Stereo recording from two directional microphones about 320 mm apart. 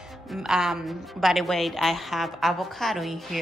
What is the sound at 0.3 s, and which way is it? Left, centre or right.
Speech, centre.